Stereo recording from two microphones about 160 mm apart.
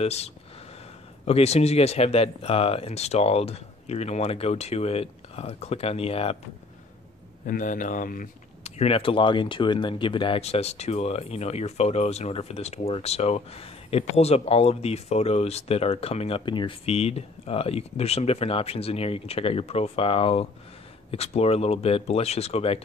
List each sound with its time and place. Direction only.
0.0 s speech: 40° left (ahead or behind)
7.4 s speech: 60° left (ahead or behind); by 22.8 s 40° left (ahead or behind)